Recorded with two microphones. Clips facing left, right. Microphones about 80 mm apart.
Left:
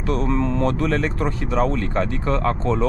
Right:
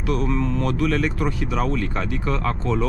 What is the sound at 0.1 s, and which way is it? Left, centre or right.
Speech, left.